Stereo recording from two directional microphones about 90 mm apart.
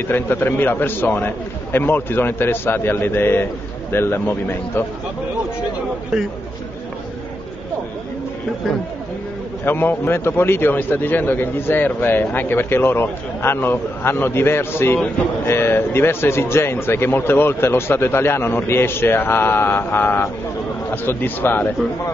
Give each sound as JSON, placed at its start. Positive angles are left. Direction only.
{"t": 0.1, "sound": "a man's voice", "side_deg": 25}
{"t": 9.7, "sound": "a man's voice", "side_deg": 25}